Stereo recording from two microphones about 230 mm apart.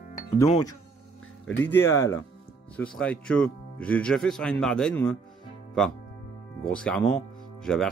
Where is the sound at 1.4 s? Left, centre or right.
Left.